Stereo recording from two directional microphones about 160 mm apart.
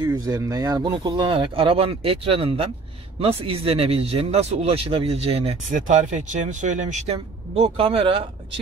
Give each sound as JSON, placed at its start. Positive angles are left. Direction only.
{"t": 0.0, "sound": "speech", "side_deg": -25}